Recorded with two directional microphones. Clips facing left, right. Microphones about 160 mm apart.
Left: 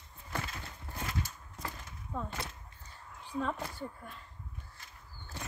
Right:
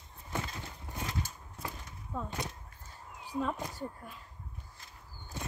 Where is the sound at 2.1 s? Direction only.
5° right (ahead or behind).